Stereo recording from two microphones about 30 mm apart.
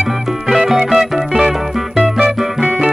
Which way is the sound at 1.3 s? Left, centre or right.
Right.